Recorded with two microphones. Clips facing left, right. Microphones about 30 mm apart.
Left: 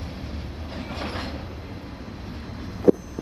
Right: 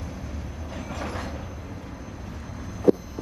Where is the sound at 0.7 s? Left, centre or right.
Left.